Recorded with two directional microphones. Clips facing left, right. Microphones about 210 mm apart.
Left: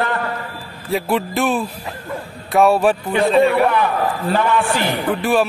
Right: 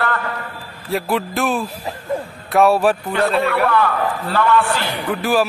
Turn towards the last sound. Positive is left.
turn(degrees=0)  # may be behind; listen again after turning